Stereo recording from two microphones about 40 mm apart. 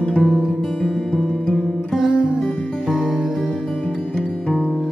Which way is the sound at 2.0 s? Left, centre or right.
Right.